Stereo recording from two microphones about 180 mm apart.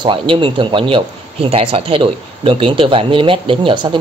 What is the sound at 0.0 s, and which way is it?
Speech, 30° right (ahead or behind).